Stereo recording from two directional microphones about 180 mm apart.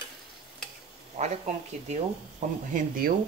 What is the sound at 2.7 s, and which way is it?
Speech, 50° right (ahead or behind).